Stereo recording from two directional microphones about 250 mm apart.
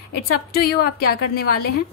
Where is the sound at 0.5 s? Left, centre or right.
Left.